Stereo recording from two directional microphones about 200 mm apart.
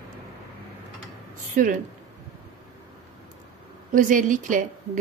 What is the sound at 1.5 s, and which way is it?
Speech, 40° right (ahead or behind).